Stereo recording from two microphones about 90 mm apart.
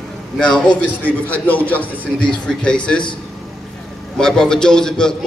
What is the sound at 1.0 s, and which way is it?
A man's voice, 20° left (ahead or behind).